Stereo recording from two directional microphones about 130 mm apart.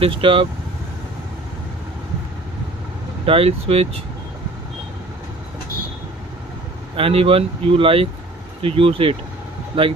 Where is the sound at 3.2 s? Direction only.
50° right (ahead or behind).